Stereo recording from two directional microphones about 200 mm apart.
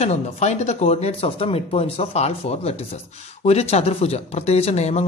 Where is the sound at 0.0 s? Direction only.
35° left (ahead or behind).